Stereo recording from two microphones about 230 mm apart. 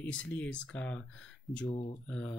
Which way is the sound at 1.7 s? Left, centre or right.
Left.